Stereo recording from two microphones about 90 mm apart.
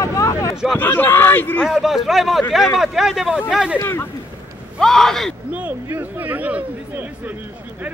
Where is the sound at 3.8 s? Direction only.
30° left (ahead or behind).